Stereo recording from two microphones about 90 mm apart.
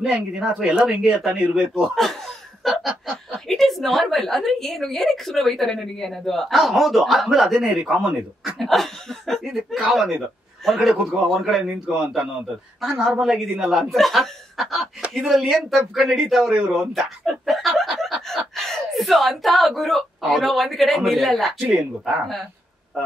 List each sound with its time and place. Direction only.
0.0 s speech: 5° right (ahead or behind)
7.7 s speech: 15° right (ahead or behind)